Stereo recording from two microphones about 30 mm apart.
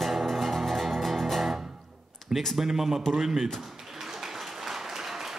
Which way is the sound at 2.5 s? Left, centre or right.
Centre.